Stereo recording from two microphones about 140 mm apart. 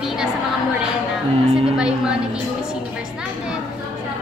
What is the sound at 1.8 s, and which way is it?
Speech, 5° right (ahead or behind).